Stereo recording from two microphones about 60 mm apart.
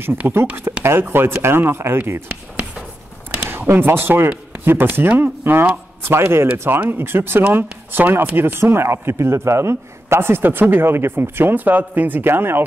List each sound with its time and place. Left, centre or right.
0.2 s a man's voice: right
0.7 s a sound: right
1.1 s speech: right
3.4 s a man's voice: right